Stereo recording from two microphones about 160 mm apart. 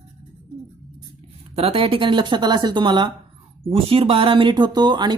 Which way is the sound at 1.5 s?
35° right (ahead or behind).